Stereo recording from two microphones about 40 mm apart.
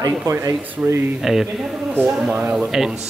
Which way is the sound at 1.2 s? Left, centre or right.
Centre.